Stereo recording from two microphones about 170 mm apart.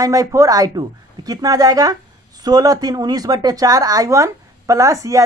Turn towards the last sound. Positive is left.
turn(degrees=-20)  # may be behind; listen again after turning